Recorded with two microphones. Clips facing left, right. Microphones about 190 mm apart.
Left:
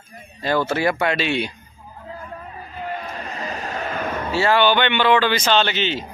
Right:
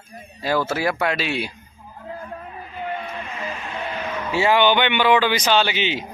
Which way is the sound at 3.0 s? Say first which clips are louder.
Even; 40° left (ahead or behind).